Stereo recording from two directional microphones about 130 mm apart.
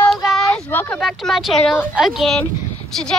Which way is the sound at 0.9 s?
Centre (ahead or behind).